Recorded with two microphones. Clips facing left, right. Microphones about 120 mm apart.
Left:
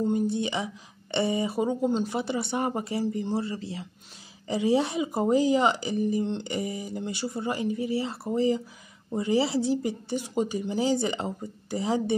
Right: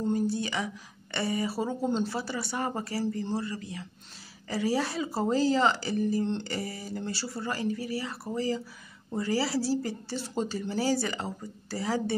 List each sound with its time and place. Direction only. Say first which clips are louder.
0.0 s speech: left 3 dB; 20° left (ahead or behind)